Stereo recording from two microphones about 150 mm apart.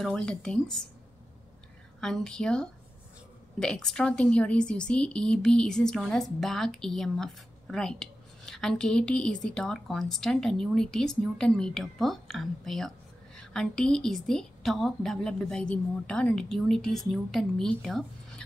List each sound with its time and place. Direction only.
0.0 s speech: 5° left (ahead or behind)
2.0 s speech: 5° left (ahead or behind)